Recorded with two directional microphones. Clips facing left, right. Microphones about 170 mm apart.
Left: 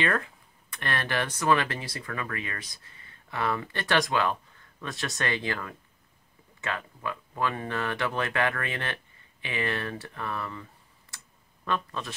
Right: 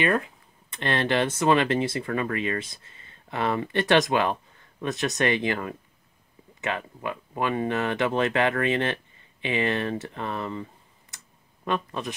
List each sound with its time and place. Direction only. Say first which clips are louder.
0.0 s speech: right 4 dB; 20° right (ahead or behind)